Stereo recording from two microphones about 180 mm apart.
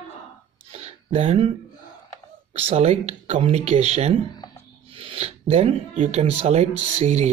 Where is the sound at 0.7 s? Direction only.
35° right (ahead or behind).